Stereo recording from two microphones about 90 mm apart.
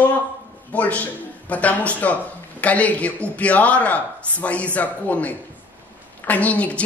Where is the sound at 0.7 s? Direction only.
15° left (ahead or behind).